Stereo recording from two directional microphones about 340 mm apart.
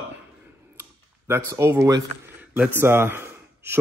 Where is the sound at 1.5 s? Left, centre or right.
Centre.